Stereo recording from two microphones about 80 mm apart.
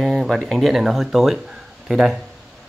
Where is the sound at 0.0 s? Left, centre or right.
Centre.